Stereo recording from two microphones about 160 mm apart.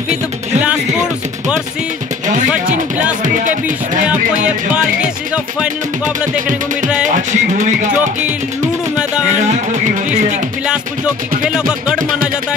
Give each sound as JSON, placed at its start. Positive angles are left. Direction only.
{"t": 0.1, "sound": "music", "side_deg": -5}
{"t": 3.4, "sound": "music", "side_deg": -55}
{"t": 4.5, "sound": "music", "side_deg": -5}
{"t": 7.2, "sound": "music", "side_deg": -50}
{"t": 11.5, "sound": "speech", "side_deg": -5}